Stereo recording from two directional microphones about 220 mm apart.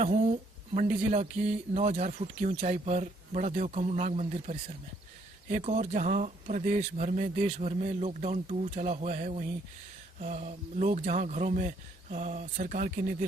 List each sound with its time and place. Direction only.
0.0 s speech: 30° right (ahead or behind)